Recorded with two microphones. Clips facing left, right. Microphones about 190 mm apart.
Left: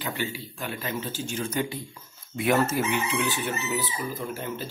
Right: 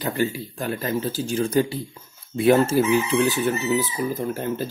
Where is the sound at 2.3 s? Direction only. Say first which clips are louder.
Right 7 dB; 30° right (ahead or behind).